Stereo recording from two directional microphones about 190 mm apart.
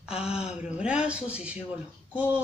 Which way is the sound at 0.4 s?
5° right (ahead or behind).